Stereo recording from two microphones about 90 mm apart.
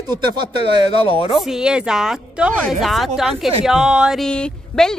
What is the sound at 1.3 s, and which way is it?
A woman's voice, 5° right (ahead or behind).